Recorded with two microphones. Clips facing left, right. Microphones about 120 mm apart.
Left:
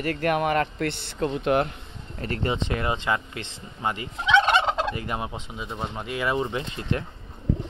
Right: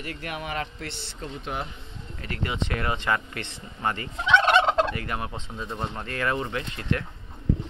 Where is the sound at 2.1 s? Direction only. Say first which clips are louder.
Left 4 dB; 35° left (ahead or behind).